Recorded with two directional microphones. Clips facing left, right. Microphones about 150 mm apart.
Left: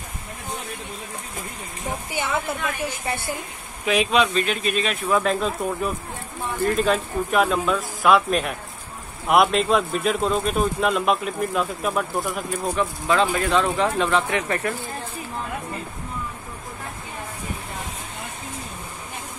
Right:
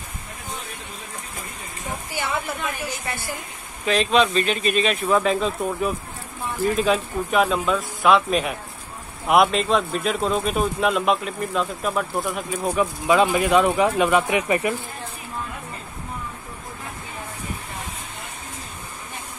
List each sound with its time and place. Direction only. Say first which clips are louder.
3.1 s a woman's voice: left 5 dB; 30° left (ahead or behind)
3.8 s speech: right 1 dB; 10° left (ahead or behind)
12.7 s speech: right 3 dB; 15° right (ahead or behind)